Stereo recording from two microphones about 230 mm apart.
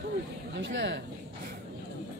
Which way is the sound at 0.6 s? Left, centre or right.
Right.